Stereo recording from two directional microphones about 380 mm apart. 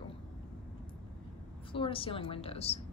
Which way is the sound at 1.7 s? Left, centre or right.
Centre.